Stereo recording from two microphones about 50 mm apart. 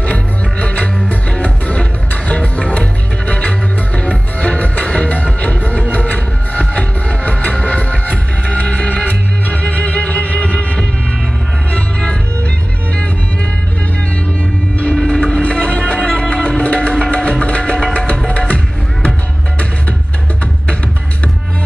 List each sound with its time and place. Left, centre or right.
0.0 s music: left
15.0 s music: centre